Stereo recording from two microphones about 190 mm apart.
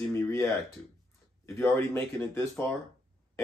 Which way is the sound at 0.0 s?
15° left (ahead or behind).